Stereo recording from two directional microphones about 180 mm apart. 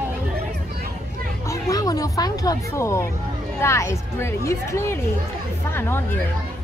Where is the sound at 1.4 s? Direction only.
20° left (ahead or behind).